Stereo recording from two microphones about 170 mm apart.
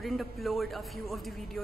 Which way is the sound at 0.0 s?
Centre (ahead or behind).